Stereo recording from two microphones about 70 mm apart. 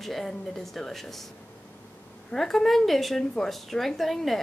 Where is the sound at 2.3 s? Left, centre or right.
Centre.